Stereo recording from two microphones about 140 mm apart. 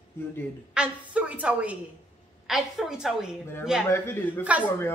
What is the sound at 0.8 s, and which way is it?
A woman's voice, 10° right (ahead or behind).